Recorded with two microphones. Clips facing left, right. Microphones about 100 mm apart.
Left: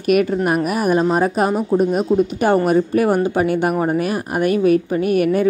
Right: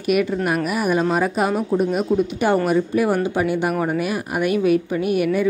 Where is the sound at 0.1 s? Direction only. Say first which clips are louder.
Left 3 dB; 45° left (ahead or behind).